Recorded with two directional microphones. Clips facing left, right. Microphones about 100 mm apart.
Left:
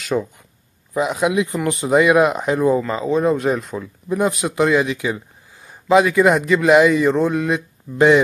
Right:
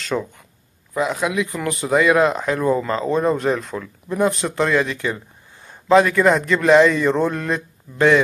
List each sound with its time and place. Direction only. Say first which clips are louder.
0.0 s speech: left 2 dB; 10° left (ahead or behind)
3.1 s speech: left 2 dB; centre (ahead or behind)
3.8 s speech: even; 15° left (ahead or behind)